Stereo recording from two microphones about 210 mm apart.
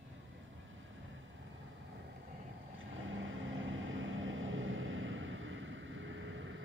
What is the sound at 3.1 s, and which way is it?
Vehicle, 65° right (ahead or behind).